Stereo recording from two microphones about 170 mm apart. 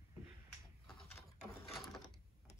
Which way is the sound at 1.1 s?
Centre (ahead or behind).